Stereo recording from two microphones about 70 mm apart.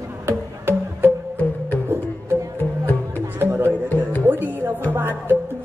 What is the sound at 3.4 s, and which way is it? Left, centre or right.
Music, right.